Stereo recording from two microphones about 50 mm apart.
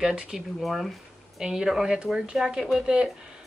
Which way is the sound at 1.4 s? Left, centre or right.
Centre.